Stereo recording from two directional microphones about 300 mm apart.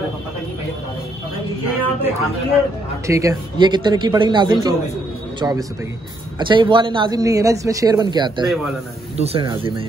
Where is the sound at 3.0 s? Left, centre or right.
Centre.